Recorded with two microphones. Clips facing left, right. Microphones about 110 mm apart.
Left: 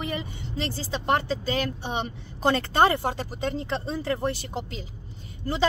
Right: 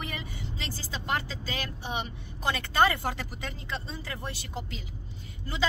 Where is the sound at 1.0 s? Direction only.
40° left (ahead or behind).